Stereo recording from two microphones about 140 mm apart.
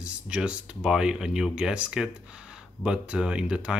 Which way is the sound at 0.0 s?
5° right (ahead or behind).